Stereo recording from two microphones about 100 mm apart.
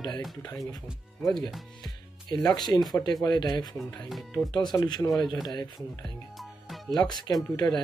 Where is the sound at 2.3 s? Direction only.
40° left (ahead or behind).